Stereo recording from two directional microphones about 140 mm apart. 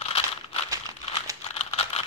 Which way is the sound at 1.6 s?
45° left (ahead or behind).